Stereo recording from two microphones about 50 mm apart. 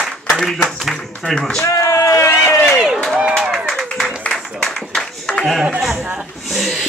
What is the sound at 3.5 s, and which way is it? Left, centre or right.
Clapping, centre.